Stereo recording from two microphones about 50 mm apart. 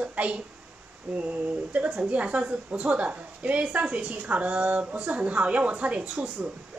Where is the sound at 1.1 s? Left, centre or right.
Centre.